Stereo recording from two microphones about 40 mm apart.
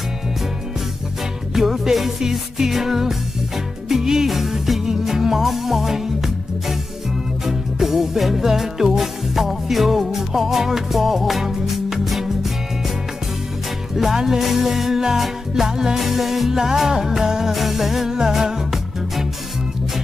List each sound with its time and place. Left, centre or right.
1.5 s music: centre
13.9 s music: centre